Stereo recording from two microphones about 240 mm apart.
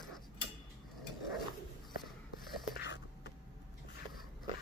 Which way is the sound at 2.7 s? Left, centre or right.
Left.